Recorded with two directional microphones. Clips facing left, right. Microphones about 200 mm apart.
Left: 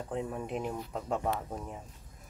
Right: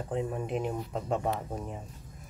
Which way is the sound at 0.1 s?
Centre (ahead or behind).